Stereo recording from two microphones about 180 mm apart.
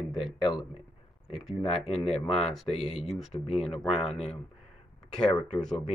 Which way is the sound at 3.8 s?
5° left (ahead or behind).